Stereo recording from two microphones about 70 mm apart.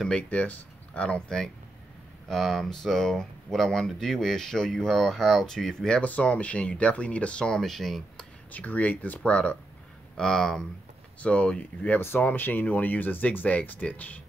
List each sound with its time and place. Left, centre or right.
0.1 s speech: centre
6.0 s speech: centre
8.5 s speech: left; by 10.6 s centre
11.1 s speech: centre